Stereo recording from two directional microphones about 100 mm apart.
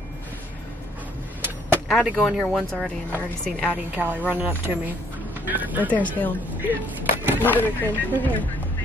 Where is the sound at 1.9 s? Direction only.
5° left (ahead or behind).